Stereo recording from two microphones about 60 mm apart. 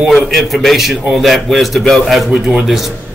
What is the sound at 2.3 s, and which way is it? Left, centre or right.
Speech, centre.